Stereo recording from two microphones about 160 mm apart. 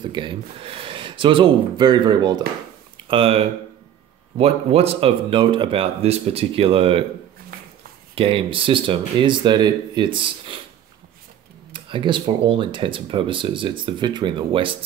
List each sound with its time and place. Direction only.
0.0 s speech: 30° right (ahead or behind)
3.1 s speech: 35° right (ahead or behind)
7.5 s a sound: 65° right (ahead or behind)
8.1 s speech: 35° right (ahead or behind)
11.7 s speech: 30° right (ahead or behind)